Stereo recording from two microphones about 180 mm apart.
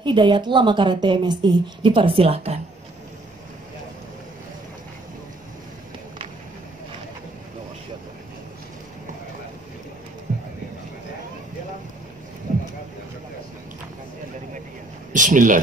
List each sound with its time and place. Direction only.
0.0 s a woman's voice: 25° right (ahead or behind)
15.1 s speech: 45° right (ahead or behind)